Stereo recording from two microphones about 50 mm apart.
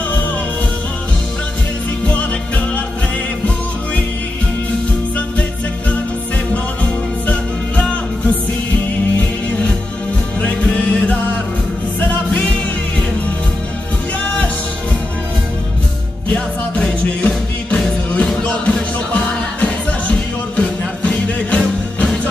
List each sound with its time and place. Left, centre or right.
2.0 s music: left
6.5 s music: left
10.4 s music: left
12.3 s music: left
16.3 s music: left
18.4 s music: left